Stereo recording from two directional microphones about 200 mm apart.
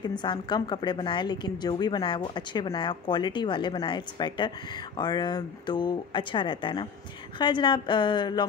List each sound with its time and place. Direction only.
0.0 s a woman's voice: 20° left (ahead or behind)